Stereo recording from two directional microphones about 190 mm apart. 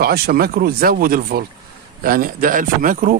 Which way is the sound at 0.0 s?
50° right (ahead or behind).